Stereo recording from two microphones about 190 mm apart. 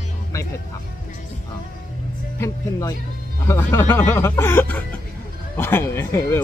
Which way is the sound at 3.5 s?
15° left (ahead or behind).